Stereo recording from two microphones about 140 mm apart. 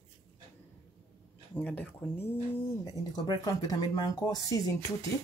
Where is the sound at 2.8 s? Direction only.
25° left (ahead or behind).